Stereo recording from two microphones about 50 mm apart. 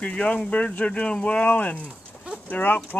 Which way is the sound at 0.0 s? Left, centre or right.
Left.